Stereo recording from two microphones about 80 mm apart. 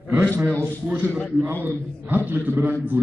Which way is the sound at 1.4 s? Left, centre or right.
Right.